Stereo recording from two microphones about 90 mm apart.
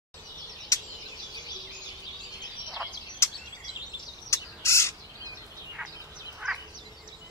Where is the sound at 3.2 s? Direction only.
30° left (ahead or behind).